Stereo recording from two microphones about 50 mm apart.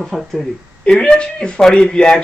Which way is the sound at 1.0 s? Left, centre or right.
Centre.